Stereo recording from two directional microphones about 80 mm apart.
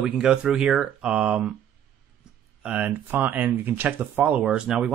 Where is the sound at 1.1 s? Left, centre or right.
Centre.